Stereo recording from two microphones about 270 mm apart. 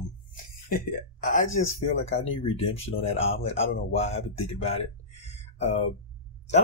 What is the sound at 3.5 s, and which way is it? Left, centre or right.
Speech, left.